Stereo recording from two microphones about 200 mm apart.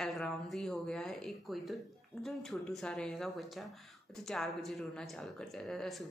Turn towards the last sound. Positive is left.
turn(degrees=0)  # may be behind; listen again after turning